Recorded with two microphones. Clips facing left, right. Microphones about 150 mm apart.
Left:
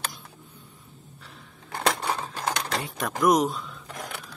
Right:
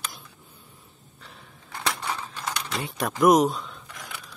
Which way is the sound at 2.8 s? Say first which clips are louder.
Right 4 dB; centre (ahead or behind).